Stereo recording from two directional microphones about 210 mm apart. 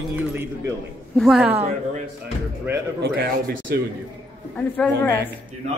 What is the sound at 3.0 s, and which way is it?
Speech, 45° right (ahead or behind).